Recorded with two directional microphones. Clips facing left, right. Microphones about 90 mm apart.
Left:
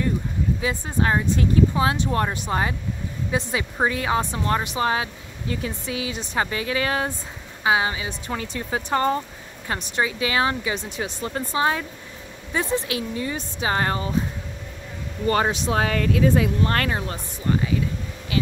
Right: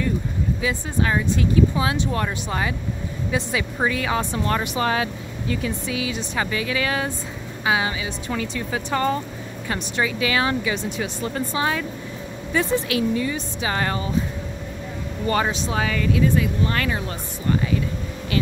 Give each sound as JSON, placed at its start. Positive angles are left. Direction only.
{"t": 0.6, "sound": "speech", "side_deg": 35}
{"t": 15.2, "sound": "speech", "side_deg": 40}
{"t": 15.5, "sound": "speech", "side_deg": 60}